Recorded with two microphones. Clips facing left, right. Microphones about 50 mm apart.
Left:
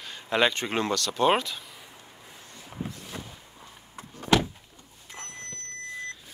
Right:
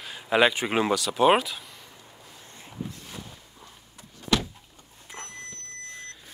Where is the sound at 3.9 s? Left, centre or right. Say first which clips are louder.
Left 3 dB; left.